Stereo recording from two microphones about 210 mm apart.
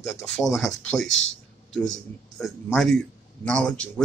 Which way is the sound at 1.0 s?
65° left (ahead or behind).